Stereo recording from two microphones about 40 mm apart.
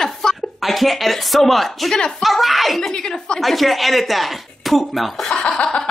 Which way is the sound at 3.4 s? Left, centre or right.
Centre.